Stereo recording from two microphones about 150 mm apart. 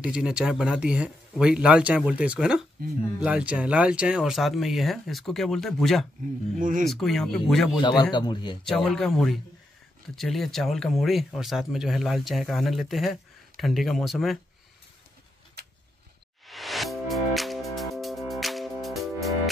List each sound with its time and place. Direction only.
0.0 s speech: 5° right (ahead or behind)
6.6 s speech: 65° right (ahead or behind)
6.9 s speech: centre (ahead or behind)
8.1 s speech: 30° left (ahead or behind)
8.6 s speech: 5° left (ahead or behind)
16.4 s music: centre (ahead or behind)